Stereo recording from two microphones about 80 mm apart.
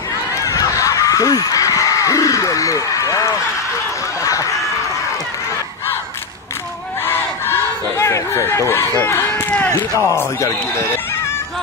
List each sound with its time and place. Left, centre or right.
0.4 s a sound: left
7.1 s battle cry: left
9.0 s run: left
9.8 s speech: left